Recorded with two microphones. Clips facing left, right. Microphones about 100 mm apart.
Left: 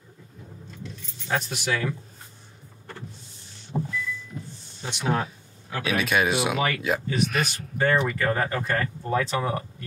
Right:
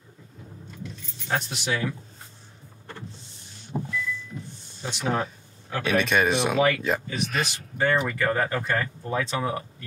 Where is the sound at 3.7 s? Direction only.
Centre (ahead or behind).